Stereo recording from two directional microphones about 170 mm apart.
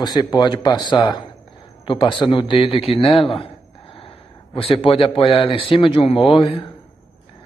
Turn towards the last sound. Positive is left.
turn(degrees=30)  # may be behind; listen again after turning